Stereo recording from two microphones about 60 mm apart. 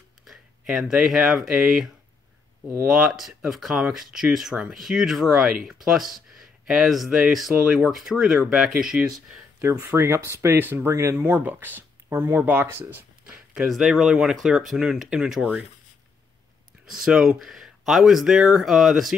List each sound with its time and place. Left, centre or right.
0.7 s speech: centre
2.9 s speech: centre
7.5 s speech: centre
8.9 s speech: centre
9.9 s speech: right
10.9 s speech: right
11.2 s speech: right
13.7 s speech: centre
16.8 s speech: centre